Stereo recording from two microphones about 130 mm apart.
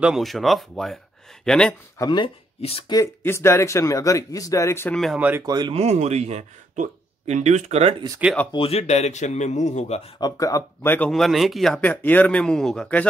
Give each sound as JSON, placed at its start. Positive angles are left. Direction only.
{"t": 0.0, "sound": "speech", "side_deg": 0}
{"t": 2.0, "sound": "speech", "side_deg": 40}
{"t": 3.3, "sound": "speech", "side_deg": 20}
{"t": 4.9, "sound": "speech", "side_deg": 0}
{"t": 5.4, "sound": "speech", "side_deg": -30}
{"t": 5.7, "sound": "speech", "side_deg": -55}
{"t": 8.5, "sound": "a man's voice", "side_deg": 45}
{"t": 10.2, "sound": "speech", "side_deg": 25}
{"t": 11.1, "sound": "speech", "side_deg": 0}